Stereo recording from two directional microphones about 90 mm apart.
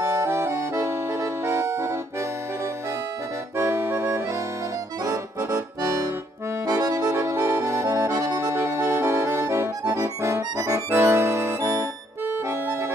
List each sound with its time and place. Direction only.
0.0 s accordion: 30° right (ahead or behind)
1.4 s music: 30° right (ahead or behind)
3.5 s accordion: 30° right (ahead or behind)
5.5 s accordion: 35° right (ahead or behind)